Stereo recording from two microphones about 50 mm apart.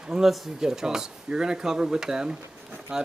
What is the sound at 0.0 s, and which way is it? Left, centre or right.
Speech, centre.